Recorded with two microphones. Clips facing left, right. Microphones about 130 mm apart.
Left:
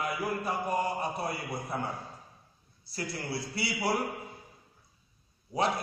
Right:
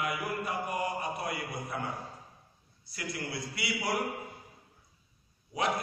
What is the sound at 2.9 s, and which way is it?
A man's voice, 30° left (ahead or behind).